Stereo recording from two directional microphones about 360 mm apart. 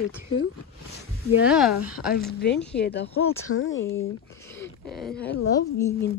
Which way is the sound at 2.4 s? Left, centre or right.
Left.